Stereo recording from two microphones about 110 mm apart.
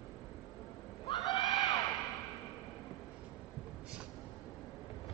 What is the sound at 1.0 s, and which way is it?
Neigh, 45° left (ahead or behind).